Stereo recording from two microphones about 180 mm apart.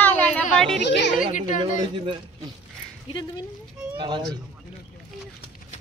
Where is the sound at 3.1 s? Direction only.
30° left (ahead or behind).